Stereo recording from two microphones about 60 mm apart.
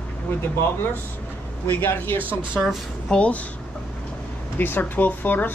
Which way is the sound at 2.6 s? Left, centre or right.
Centre.